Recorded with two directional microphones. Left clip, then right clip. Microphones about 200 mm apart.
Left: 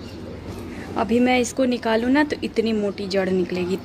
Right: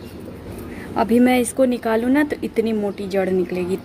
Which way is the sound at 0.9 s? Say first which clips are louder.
Right 3 dB; 25° right (ahead or behind).